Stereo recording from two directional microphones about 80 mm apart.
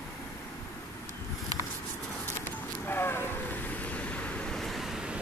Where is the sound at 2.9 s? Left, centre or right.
Left.